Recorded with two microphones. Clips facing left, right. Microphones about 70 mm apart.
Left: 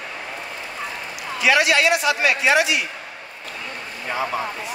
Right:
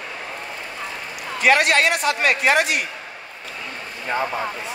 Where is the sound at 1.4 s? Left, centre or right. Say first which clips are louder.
Right 1 dB; right.